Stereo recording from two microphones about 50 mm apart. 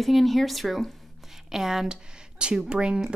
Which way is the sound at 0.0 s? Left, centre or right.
Centre.